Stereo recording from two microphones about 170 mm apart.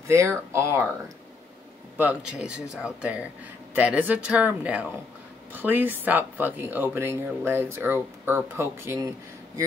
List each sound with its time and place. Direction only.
0.1 s speech: 15° right (ahead or behind)